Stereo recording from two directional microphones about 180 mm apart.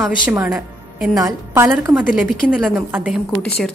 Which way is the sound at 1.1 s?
15° right (ahead or behind).